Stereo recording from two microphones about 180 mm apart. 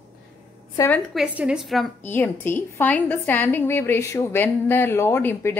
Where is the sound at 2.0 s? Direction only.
10° left (ahead or behind).